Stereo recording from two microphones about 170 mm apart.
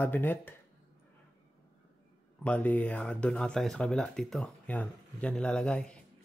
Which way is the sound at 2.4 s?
10° left (ahead or behind).